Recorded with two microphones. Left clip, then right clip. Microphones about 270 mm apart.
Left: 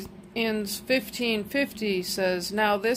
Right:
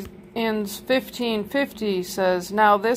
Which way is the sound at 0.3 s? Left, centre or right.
Centre.